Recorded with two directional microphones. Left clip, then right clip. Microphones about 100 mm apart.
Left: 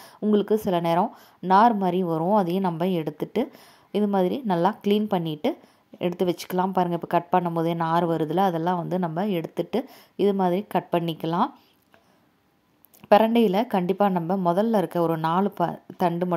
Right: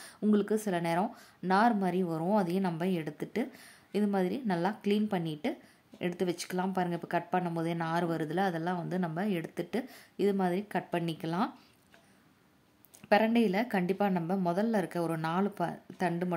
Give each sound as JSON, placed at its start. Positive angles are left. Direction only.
{"t": 0.3, "sound": "a woman's voice", "side_deg": 40}
{"t": 13.1, "sound": "a woman's voice", "side_deg": 55}